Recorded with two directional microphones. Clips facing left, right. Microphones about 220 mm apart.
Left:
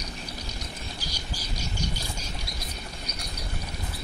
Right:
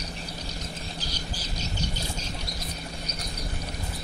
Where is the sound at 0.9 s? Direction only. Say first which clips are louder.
Right 2 dB; 10° left (ahead or behind).